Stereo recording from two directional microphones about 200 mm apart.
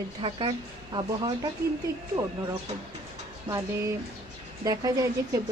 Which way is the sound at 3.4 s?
15° right (ahead or behind).